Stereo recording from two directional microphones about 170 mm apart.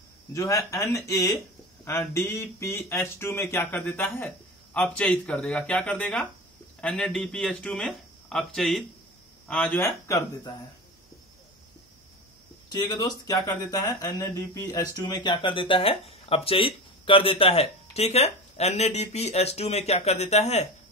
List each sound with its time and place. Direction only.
0.3 s speech: 20° left (ahead or behind)
12.6 s speech: 25° left (ahead or behind); by 20.6 s 40° left (ahead or behind)